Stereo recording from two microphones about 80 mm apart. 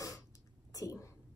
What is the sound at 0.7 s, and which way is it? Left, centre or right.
Speech, left.